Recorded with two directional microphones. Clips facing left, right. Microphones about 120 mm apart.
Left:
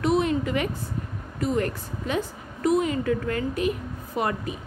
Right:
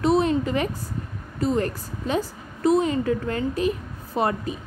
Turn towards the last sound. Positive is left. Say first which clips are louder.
# right 3 dB
turn(degrees=-30)  # may be behind; listen again after turning